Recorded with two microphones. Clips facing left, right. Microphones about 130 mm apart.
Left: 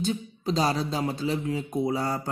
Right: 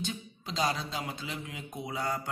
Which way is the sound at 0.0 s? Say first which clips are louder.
Left 10 dB; 35° left (ahead or behind).